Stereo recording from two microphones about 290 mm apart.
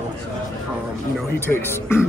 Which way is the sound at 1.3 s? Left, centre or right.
Centre.